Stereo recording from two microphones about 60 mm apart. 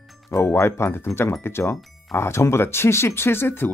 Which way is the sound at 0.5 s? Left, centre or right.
Left.